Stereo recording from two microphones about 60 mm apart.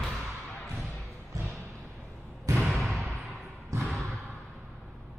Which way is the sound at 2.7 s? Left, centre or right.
Centre.